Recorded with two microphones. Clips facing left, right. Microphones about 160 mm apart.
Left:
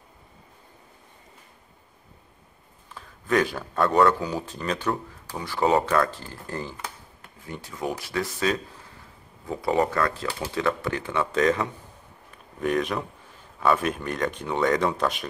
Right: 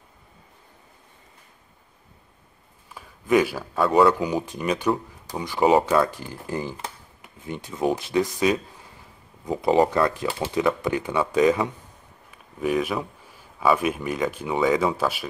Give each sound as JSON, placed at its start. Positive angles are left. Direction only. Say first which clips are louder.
{"t": 2.9, "sound": "speech", "louder": "right 4 dB", "side_deg": -10}